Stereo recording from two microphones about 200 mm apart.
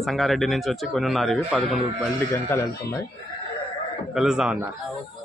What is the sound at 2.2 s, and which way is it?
Speech, 10° left (ahead or behind).